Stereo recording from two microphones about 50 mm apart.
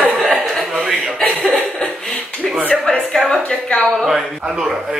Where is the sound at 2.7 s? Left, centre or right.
Centre.